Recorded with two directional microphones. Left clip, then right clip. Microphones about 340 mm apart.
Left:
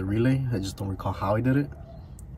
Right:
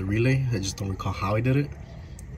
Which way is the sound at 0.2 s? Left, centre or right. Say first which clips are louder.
Even; centre.